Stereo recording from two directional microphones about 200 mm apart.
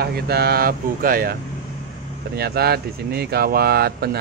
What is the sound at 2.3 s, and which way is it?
Speech, 55° right (ahead or behind).